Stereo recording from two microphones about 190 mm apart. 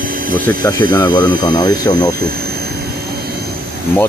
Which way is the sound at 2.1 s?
55° right (ahead or behind).